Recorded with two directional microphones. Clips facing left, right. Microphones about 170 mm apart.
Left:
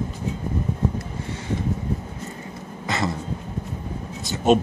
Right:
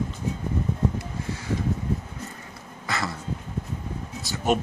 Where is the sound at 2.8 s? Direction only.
20° left (ahead or behind).